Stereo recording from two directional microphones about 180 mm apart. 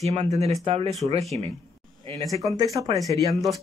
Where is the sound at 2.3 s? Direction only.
20° right (ahead or behind).